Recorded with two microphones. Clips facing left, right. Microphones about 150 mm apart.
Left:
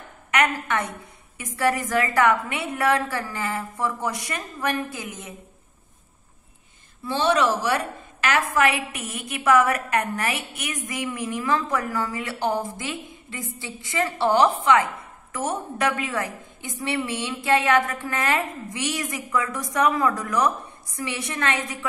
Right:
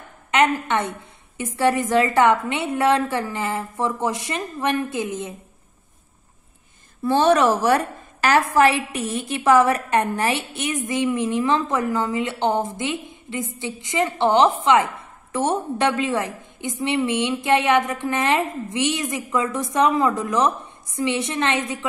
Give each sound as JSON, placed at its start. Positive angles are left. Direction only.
{"t": 0.3, "sound": "a woman's voice", "side_deg": -25}
{"t": 7.1, "sound": "a woman's voice", "side_deg": -45}